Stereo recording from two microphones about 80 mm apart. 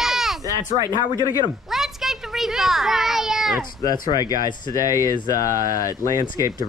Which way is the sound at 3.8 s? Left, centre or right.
Left.